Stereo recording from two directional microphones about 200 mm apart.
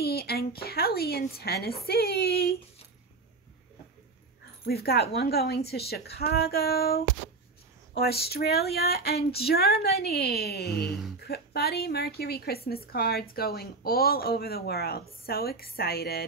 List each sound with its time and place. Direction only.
0.0 s a woman's voice: 50° left (ahead or behind)
4.6 s a woman's voice: 50° left (ahead or behind)